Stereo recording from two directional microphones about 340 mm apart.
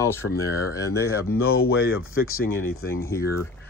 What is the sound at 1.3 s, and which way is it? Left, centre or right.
Speech, left.